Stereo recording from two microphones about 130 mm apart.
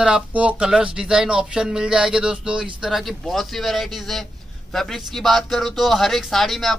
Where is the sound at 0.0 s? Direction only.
10° right (ahead or behind).